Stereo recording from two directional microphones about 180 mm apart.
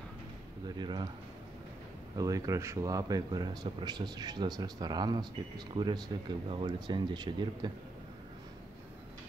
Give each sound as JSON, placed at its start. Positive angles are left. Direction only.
{"t": 0.7, "sound": "speech", "side_deg": -25}
{"t": 2.1, "sound": "speech", "side_deg": -20}